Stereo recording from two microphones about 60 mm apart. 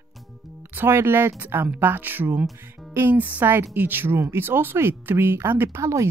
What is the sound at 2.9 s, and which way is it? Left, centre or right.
Music, right.